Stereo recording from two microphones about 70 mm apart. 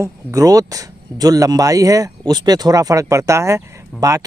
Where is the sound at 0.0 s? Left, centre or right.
Right.